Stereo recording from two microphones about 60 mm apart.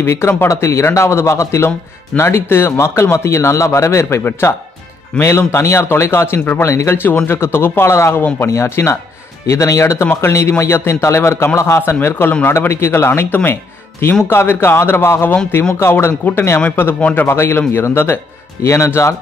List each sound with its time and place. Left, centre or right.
0.1 s speech: left
13.3 s speech: left
14.2 s speech: left
16.6 s speech: left